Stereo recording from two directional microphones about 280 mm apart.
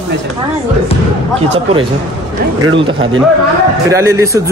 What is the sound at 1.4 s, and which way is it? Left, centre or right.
A man's voice, centre.